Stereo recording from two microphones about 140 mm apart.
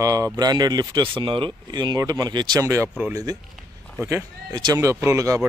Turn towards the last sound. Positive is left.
turn(degrees=-25)  # may be behind; listen again after turning